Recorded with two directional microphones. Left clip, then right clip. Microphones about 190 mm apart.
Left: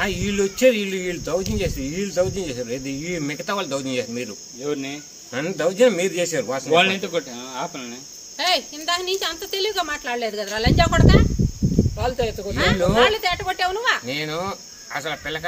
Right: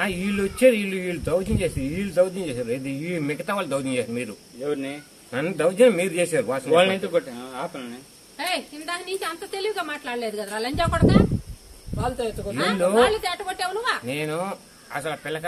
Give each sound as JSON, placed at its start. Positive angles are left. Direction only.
{"t": 0.0, "sound": "speech", "side_deg": 0}
{"t": 5.3, "sound": "speech", "side_deg": 0}
{"t": 6.7, "sound": "speech", "side_deg": 50}
{"t": 8.4, "sound": "a woman's voice", "side_deg": 35}
{"t": 14.0, "sound": "speech", "side_deg": -5}